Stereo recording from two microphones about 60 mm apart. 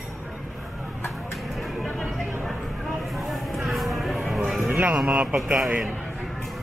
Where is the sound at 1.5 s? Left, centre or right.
Centre.